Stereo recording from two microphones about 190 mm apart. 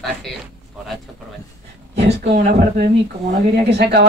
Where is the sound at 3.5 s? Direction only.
60° right (ahead or behind).